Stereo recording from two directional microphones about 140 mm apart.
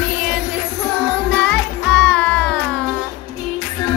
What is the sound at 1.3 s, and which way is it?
Music, 10° left (ahead or behind).